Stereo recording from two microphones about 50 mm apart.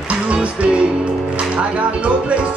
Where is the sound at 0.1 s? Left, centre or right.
Right.